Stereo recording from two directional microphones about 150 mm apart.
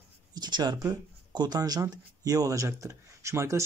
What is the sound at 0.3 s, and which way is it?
Speech, 30° right (ahead or behind).